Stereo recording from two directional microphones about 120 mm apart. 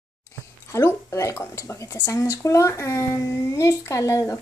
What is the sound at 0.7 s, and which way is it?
A woman's voice, 25° left (ahead or behind).